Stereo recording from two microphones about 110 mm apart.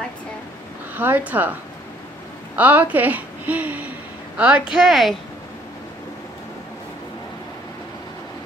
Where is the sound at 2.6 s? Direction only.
15° right (ahead or behind).